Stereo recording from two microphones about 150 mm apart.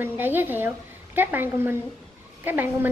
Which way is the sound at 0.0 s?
15° right (ahead or behind).